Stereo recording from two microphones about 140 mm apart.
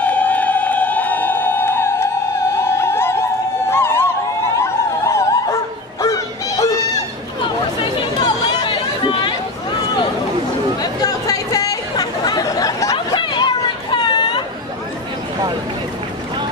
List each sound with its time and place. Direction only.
0.0 s music: 10° left (ahead or behind)
2.5 s a sound: 20° left (ahead or behind)
4.6 s dog: 20° left (ahead or behind)
8.2 s chatter: 30° left (ahead or behind)
10.8 s chatter: 25° left (ahead or behind)
13.9 s a sound: 35° left (ahead or behind)